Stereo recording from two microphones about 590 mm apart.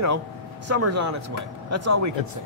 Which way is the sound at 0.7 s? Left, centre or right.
Right.